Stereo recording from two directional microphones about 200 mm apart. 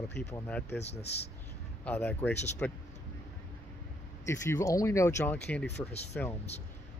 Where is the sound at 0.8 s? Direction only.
30° left (ahead or behind).